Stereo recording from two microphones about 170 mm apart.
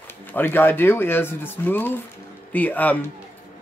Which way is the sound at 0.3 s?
10° left (ahead or behind).